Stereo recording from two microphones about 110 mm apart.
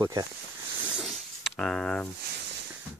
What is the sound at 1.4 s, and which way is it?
Speech, 10° left (ahead or behind).